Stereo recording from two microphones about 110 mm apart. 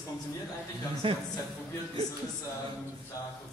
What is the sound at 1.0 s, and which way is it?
Speech, 55° right (ahead or behind).